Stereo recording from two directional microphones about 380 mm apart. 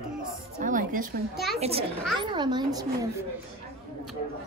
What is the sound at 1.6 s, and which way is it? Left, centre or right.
A child's voice, centre.